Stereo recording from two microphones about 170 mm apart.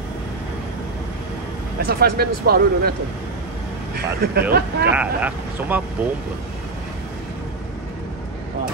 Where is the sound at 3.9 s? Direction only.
60° right (ahead or behind).